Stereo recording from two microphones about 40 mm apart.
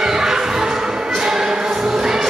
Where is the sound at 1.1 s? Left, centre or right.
Centre.